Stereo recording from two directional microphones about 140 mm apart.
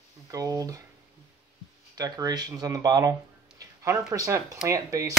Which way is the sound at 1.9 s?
25° right (ahead or behind).